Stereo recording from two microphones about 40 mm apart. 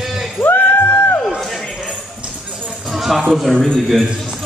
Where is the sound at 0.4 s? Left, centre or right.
Left.